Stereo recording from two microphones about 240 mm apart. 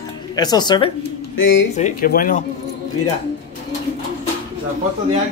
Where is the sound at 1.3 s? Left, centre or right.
Left.